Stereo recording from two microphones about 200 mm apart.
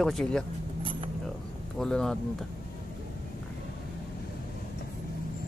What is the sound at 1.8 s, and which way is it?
Speech, 5° left (ahead or behind).